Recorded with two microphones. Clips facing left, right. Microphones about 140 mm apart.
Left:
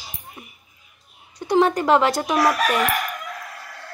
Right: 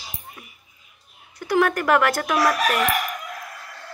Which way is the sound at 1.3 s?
20° left (ahead or behind).